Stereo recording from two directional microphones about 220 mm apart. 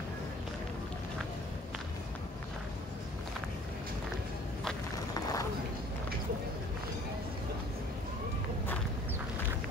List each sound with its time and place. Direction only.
4.9 s run: 15° left (ahead or behind)